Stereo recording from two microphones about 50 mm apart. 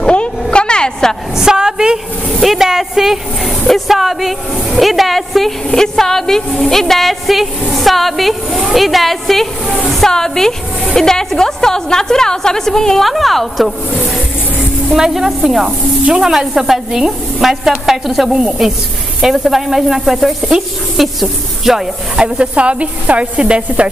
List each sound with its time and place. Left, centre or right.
0.0 s a sound: left
1.3 s a sound: centre
5.7 s a woman's voice: centre
9.7 s speech: centre
9.9 s a woman's voice: centre
22.1 s a woman's voice: centre